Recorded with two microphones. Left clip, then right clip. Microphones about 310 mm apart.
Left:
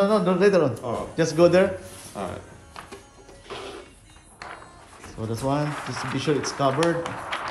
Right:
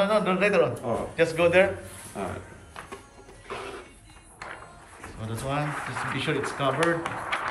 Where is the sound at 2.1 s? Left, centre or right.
Centre.